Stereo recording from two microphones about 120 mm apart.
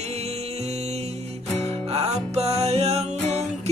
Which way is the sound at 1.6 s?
60° right (ahead or behind).